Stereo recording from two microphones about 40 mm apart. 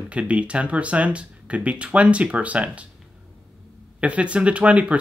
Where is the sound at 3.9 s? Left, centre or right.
Right.